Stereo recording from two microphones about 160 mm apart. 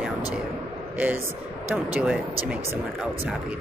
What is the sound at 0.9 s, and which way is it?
Speech, 10° right (ahead or behind).